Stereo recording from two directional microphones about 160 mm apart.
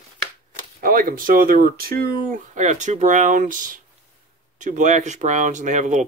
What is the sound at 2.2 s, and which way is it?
Speech, 50° right (ahead or behind).